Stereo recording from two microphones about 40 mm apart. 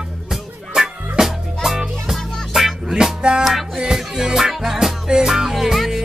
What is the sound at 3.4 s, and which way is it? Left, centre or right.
Music, centre.